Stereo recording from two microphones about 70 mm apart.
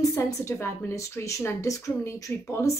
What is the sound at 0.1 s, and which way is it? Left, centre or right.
Speech, left.